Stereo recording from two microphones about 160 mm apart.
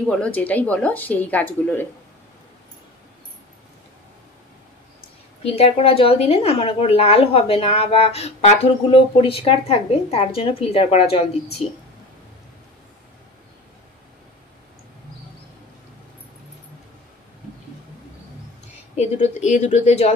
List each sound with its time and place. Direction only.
0.0 s speech: 10° left (ahead or behind)
5.4 s a woman's voice: 40° left (ahead or behind)
18.9 s speech: 45° left (ahead or behind)